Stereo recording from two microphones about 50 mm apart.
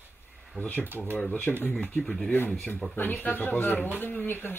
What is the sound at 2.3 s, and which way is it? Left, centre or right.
Speech, left.